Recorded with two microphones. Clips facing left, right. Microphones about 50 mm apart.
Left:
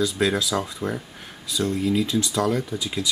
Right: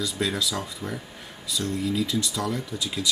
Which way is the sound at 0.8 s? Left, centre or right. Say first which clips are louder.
Left 6 dB; left.